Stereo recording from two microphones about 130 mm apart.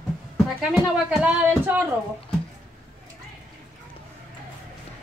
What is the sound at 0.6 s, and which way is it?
Speech, 5° right (ahead or behind).